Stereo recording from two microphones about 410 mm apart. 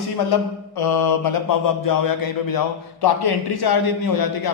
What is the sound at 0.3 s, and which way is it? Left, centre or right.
Speech, left.